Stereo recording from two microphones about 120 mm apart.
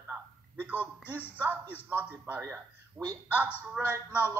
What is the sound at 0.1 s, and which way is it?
A man's voice, 15° right (ahead or behind).